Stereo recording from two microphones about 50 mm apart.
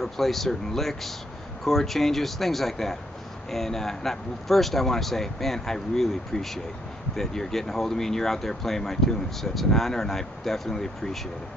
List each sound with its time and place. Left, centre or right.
0.0 s speech: centre